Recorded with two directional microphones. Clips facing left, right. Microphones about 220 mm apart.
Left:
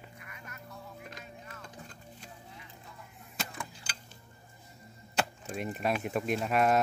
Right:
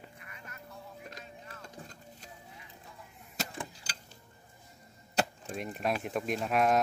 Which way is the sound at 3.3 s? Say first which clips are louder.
Right 2 dB; 35° right (ahead or behind).